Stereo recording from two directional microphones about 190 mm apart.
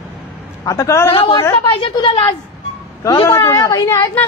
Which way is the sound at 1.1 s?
25° left (ahead or behind).